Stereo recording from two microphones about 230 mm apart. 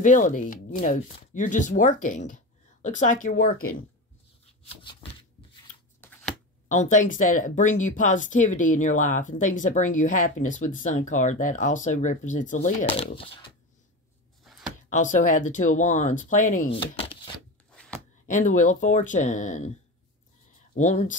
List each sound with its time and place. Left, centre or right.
0.0 s speech: left
5.9 s shuffling cards: centre
6.7 s speech: left
14.4 s a sound: centre
14.9 s speech: left
17.6 s a sound: centre
18.2 s speech: left
20.7 s speech: left